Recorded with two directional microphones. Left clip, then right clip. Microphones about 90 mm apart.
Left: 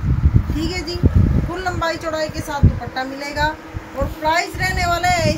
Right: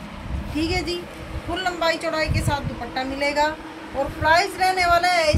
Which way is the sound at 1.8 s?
50° right (ahead or behind).